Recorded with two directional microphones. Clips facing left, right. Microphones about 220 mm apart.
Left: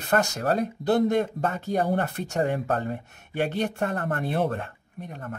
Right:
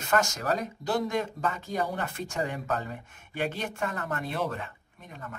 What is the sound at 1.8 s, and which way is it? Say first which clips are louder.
Speech: left 4 dB; 40° left (ahead or behind).